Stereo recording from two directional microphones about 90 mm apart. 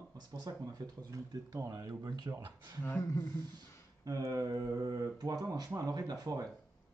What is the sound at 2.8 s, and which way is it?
Speech, 30° left (ahead or behind).